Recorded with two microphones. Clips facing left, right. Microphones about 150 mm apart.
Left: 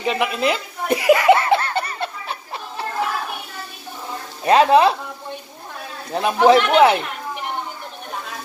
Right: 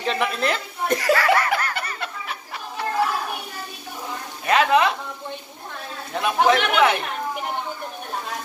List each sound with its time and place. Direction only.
0.0 s snicker: 10° left (ahead or behind); by 2.3 s 30° left (ahead or behind)
4.5 s speech: 30° left (ahead or behind)
6.1 s speech: 30° left (ahead or behind)